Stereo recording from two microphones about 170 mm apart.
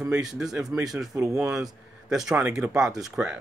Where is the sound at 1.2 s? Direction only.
20° right (ahead or behind).